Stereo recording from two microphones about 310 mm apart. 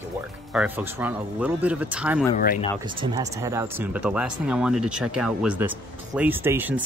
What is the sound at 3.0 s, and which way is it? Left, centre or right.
Speech, centre.